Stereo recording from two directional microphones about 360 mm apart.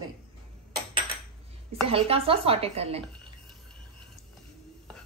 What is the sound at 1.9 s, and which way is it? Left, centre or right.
A woman's voice, centre.